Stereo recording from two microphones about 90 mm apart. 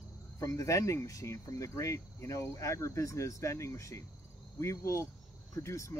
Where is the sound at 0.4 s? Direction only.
35° left (ahead or behind).